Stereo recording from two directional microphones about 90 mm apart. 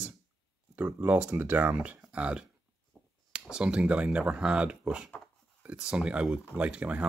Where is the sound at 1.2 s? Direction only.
20° right (ahead or behind).